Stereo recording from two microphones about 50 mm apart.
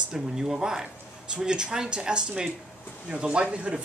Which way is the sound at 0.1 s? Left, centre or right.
Centre.